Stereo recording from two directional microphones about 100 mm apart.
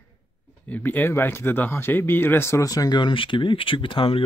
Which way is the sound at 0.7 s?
20° left (ahead or behind).